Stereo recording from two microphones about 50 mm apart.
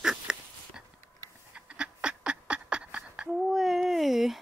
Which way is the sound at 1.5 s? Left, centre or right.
Right.